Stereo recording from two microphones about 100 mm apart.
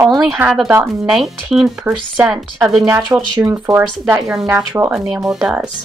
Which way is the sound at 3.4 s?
25° right (ahead or behind).